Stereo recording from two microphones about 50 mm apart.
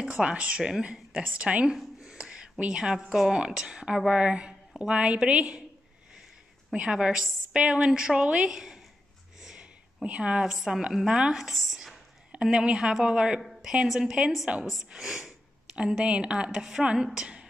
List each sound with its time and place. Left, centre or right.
0.2 s a woman's voice: right
1.2 s a woman's voice: right
2.0 s a sound: centre
3.1 s a woman's voice: centre
6.7 s a woman's voice: right
8.5 s a woman's voice: centre
10.0 s a woman's voice: right
10.4 s a woman's voice: centre
11.3 s speech: centre
12.4 s a woman's voice: centre
13.4 s a woman's voice: centre